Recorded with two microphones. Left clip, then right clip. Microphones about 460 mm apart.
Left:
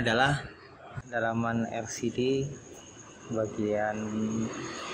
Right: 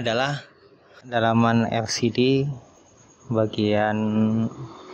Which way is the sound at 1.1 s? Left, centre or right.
Right.